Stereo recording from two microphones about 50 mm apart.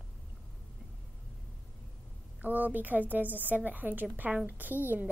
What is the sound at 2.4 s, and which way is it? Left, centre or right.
A woman's voice, right.